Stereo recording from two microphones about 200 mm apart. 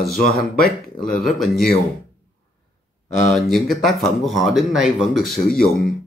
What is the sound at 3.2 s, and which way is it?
Speech, centre (ahead or behind).